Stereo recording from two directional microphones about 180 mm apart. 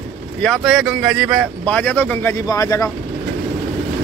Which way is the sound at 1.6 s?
10° left (ahead or behind).